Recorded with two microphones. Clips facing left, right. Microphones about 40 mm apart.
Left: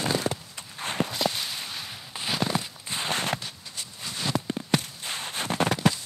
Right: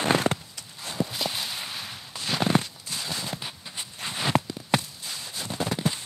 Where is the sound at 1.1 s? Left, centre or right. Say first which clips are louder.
Left 2 dB; centre.